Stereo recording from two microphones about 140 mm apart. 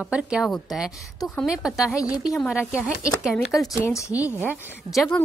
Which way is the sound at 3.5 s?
20° left (ahead or behind).